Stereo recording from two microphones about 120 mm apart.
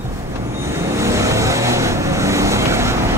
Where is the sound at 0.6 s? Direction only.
20° right (ahead or behind).